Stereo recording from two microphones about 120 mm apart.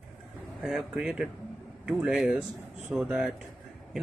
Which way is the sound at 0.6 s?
5° right (ahead or behind).